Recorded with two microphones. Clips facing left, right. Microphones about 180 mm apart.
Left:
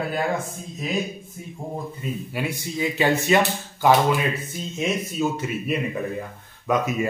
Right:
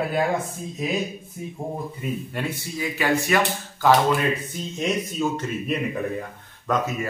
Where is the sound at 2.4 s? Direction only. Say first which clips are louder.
Left 2 dB; 5° left (ahead or behind).